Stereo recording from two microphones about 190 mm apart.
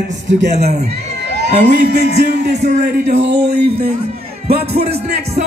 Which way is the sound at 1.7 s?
60° right (ahead or behind).